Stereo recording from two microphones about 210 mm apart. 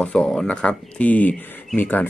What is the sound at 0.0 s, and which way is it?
A man's voice, 5° left (ahead or behind).